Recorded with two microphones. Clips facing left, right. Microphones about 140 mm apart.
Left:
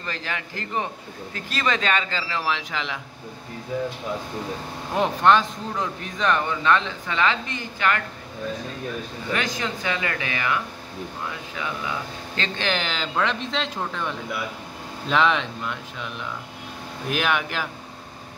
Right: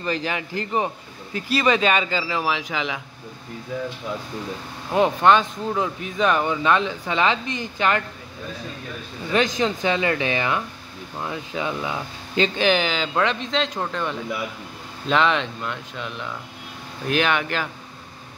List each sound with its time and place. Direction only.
0.0 s speech: 15° right (ahead or behind)
4.9 s speech: 5° right (ahead or behind); by 8.0 s 20° right (ahead or behind)
9.3 s speech: 20° right (ahead or behind)
12.5 s speech: 5° right (ahead or behind)
17.1 s speech: 5° left (ahead or behind)